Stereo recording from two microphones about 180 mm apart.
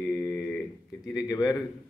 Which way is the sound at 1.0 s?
20° left (ahead or behind).